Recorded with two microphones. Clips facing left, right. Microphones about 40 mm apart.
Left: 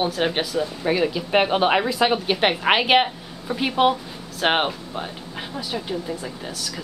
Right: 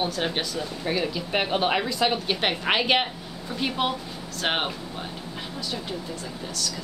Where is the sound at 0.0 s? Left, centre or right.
Centre.